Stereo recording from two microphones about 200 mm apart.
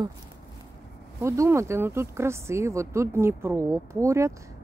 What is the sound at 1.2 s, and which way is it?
A woman's voice, 15° right (ahead or behind).